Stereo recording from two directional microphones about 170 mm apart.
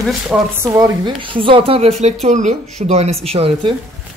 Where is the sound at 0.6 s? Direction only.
20° right (ahead or behind).